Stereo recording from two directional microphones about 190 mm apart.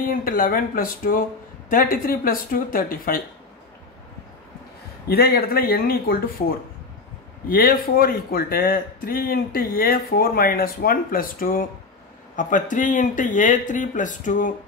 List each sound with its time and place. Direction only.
0.2 s speech: 45° left (ahead or behind)
5.0 s speech: 55° left (ahead or behind)
7.4 s speech: 50° left (ahead or behind)